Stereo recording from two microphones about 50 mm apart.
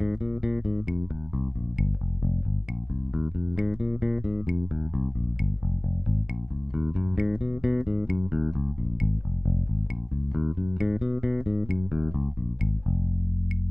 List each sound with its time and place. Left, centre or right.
0.0 s music: centre
1.8 s bass guitar: centre
3.2 s music: centre
6.7 s music: centre